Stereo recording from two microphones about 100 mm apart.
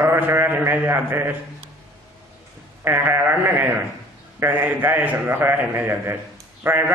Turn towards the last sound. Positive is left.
turn(degrees=-20)  # may be behind; listen again after turning